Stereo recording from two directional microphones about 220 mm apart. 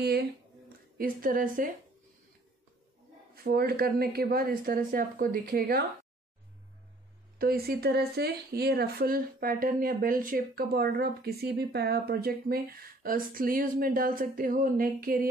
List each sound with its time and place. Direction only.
0.0 s a woman's voice: 45° right (ahead or behind)
3.3 s speech: 45° right (ahead or behind)
7.3 s speech: 45° right (ahead or behind)